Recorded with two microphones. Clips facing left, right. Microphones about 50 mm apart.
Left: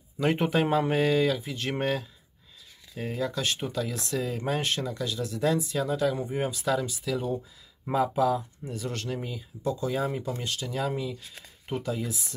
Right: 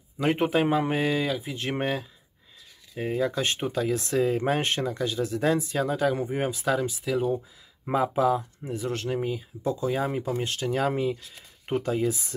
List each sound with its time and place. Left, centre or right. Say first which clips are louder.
0.2 s speech: right 2 dB; centre; by 12.4 s right